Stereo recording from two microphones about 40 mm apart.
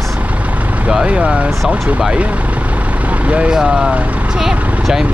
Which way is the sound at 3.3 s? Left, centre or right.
Right.